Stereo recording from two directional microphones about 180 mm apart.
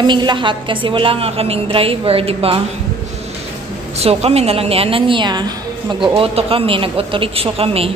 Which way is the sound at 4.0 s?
35° right (ahead or behind).